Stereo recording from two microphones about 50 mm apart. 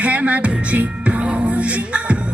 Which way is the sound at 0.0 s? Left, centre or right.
Right.